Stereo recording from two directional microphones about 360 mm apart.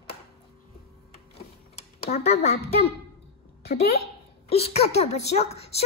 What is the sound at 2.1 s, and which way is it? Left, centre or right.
A woman's voice, centre.